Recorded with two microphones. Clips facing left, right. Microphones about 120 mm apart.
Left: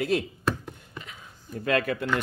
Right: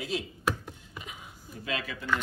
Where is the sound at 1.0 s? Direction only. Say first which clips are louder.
Right 1 dB; 15° right (ahead or behind).